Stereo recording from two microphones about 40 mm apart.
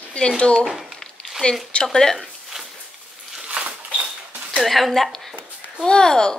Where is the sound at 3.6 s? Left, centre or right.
Centre.